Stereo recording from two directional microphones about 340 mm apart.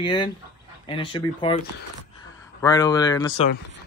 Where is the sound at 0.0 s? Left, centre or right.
Centre.